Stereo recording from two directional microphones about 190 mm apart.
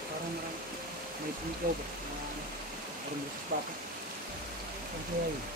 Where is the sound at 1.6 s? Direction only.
50° right (ahead or behind).